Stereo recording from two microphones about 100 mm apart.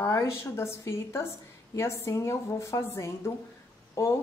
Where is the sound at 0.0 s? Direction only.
30° left (ahead or behind).